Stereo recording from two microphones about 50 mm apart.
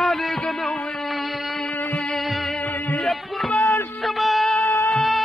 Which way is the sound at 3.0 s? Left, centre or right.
Centre.